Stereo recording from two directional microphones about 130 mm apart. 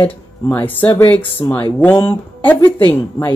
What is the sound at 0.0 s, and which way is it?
Speech, 15° left (ahead or behind).